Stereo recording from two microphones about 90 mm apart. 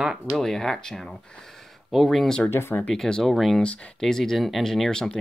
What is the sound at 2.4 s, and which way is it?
Speech, 25° left (ahead or behind).